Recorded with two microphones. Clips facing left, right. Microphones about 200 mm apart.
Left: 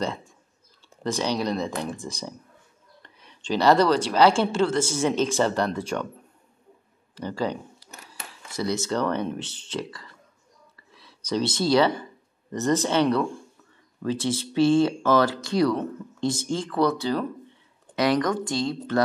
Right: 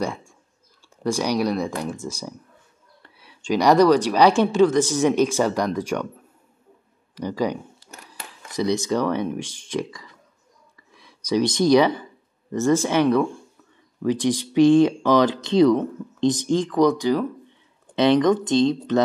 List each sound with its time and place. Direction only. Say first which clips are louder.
0.0 s speech: right 2 dB; 10° right (ahead or behind)
3.0 s speech: right 2 dB; 10° right (ahead or behind)
7.2 s speech: right 4 dB; 15° right (ahead or behind)
17.9 s speech: right 6 dB; 25° right (ahead or behind)